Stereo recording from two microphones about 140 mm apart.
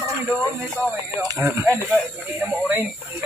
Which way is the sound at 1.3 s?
25° right (ahead or behind).